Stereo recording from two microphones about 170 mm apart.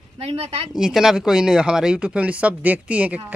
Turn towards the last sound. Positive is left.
turn(degrees=-10)  # may be behind; listen again after turning